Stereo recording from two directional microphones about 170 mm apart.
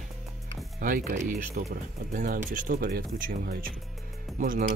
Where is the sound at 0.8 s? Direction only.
50° right (ahead or behind).